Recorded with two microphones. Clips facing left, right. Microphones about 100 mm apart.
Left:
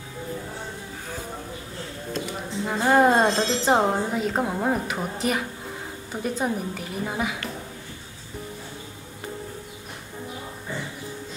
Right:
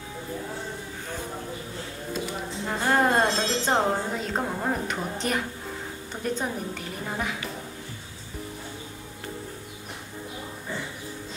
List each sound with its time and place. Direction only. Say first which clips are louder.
2.1 s a woman's voice: left 2 dB; 5° left (ahead or behind)